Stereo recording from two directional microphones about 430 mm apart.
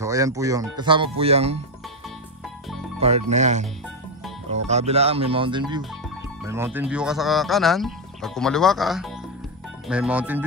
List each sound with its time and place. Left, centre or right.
0.0 s speech: centre
3.3 s speech: centre